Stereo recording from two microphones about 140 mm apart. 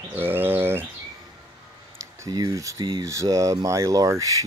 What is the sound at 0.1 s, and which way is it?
Bird, 15° right (ahead or behind).